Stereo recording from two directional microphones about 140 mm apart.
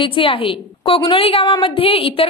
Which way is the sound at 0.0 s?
40° left (ahead or behind).